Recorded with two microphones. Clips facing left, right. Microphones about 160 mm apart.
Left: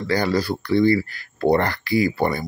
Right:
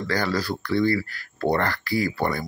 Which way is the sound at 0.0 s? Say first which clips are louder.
Left 4 dB; 15° left (ahead or behind).